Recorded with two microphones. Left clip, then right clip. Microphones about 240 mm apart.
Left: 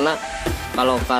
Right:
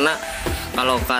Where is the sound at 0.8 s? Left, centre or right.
Centre.